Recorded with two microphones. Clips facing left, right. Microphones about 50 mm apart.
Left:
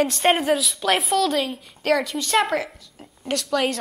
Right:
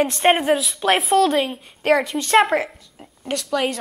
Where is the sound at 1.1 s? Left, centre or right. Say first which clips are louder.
Right 4 dB; right.